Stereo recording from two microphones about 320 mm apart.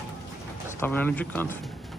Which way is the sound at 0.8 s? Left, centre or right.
Centre.